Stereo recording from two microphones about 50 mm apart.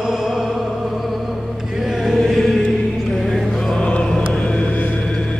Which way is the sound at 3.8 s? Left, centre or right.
Centre.